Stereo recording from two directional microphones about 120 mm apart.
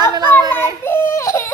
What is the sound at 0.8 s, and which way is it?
Baby cry, 20° left (ahead or behind).